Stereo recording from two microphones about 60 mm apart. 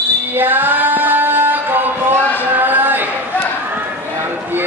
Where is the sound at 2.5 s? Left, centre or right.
Right.